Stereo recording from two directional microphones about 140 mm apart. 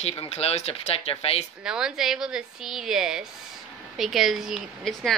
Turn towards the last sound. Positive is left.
turn(degrees=0)  # may be behind; listen again after turning